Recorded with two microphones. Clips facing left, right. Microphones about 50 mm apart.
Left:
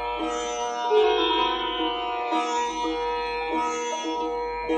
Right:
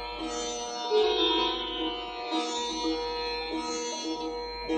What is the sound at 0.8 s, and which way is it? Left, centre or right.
Music, left.